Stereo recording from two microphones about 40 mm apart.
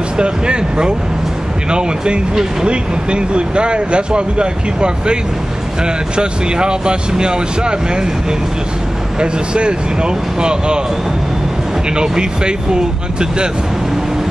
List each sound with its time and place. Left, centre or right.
0.2 s speech: right
11.9 s speech: right